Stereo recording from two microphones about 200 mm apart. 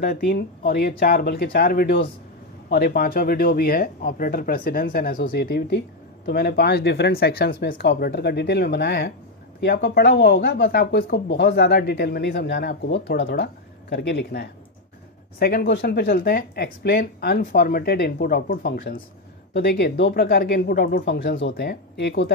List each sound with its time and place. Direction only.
0.0 s speech: 50° left (ahead or behind)